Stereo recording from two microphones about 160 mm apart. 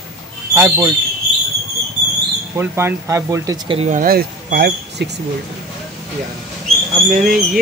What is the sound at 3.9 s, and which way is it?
Speech, 60° right (ahead or behind).